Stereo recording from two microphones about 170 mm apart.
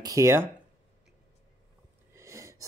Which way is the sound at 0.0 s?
20° right (ahead or behind).